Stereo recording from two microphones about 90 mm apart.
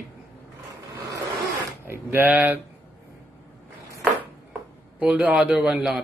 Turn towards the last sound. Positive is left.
turn(degrees=-10)  # may be behind; listen again after turning